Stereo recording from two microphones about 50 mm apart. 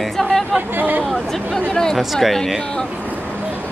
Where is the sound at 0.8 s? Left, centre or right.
Right.